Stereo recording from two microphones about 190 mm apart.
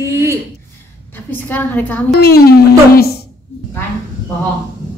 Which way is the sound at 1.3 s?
10° left (ahead or behind).